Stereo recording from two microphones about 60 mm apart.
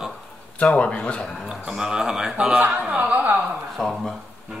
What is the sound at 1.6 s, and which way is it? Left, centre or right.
Speech, centre.